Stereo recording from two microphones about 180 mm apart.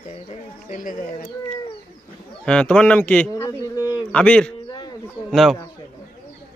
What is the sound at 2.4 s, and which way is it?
A man's voice, 5° left (ahead or behind).